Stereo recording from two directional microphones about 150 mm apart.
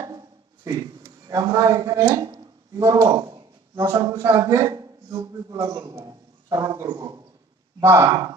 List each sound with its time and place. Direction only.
0.0 s speech: 25° right (ahead or behind)